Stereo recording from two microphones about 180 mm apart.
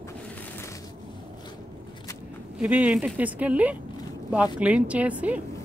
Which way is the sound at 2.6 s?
5° right (ahead or behind).